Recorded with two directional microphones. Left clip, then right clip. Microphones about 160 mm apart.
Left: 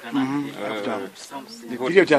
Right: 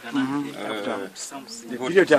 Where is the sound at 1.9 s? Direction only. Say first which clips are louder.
Left 1 dB; 50° left (ahead or behind).